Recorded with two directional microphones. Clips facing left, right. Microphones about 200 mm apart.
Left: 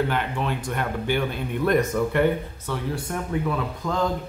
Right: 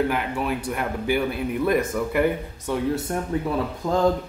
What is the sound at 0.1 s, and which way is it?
Speech, 10° right (ahead or behind).